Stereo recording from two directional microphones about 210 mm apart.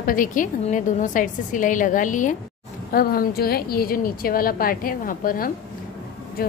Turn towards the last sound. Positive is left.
turn(degrees=40)  # may be behind; listen again after turning